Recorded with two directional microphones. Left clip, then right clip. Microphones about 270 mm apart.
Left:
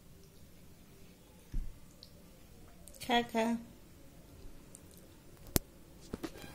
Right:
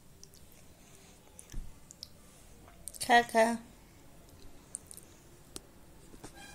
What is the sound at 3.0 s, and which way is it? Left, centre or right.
Speech, right.